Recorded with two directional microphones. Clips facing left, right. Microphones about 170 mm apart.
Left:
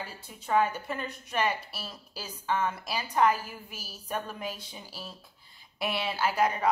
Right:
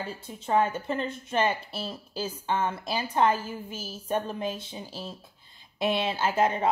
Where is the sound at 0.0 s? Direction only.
25° right (ahead or behind).